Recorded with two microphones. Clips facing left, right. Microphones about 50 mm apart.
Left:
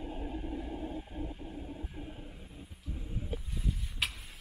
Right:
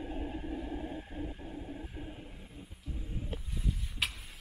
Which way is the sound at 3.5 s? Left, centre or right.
Centre.